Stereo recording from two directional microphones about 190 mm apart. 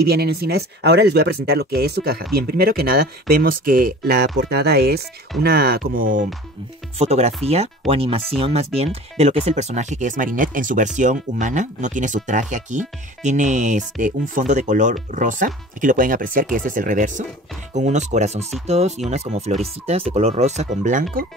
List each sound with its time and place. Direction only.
0.0 s speech: 55° right (ahead or behind)
7.0 s speech: 35° right (ahead or behind)